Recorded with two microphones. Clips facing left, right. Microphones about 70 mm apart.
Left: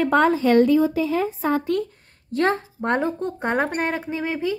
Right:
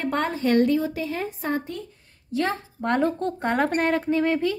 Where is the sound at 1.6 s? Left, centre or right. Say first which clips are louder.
Left 11 dB; left.